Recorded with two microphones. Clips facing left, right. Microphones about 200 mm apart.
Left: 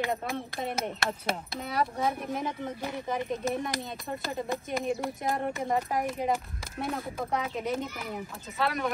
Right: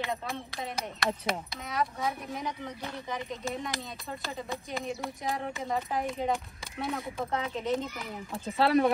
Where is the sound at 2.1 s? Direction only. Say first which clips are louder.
Left 4 dB; 50° left (ahead or behind).